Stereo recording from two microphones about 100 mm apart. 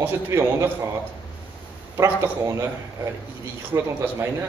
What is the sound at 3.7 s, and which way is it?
Speech, 30° right (ahead or behind).